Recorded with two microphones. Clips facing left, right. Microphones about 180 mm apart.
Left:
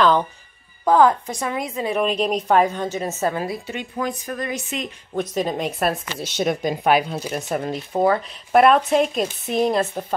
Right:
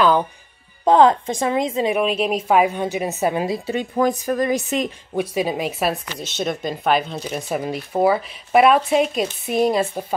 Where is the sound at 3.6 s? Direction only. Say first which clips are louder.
Right 7 dB; 35° right (ahead or behind).